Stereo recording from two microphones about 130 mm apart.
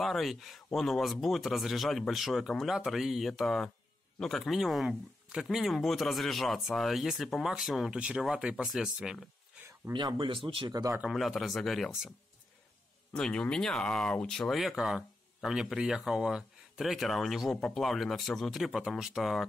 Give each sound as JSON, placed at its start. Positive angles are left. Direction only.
{"t": 0.0, "sound": "speech", "side_deg": 0}
{"t": 9.9, "sound": "speech", "side_deg": -40}
{"t": 11.0, "sound": "speech", "side_deg": 0}
{"t": 13.1, "sound": "speech", "side_deg": 5}